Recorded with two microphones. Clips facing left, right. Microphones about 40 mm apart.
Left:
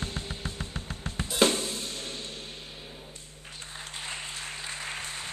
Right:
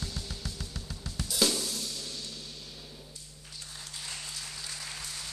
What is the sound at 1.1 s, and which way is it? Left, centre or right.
Drum kit, left.